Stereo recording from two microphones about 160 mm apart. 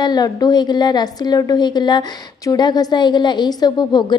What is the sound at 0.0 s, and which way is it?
A woman's voice, 25° left (ahead or behind).